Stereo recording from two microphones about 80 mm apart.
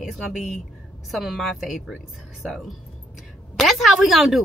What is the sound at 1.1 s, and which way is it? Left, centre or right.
Speech, centre.